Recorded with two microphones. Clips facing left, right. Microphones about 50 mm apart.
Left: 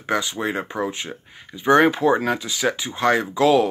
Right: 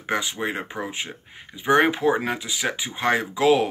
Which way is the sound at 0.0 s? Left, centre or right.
Right.